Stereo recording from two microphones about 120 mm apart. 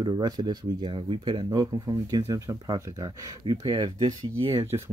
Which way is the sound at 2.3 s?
30° right (ahead or behind).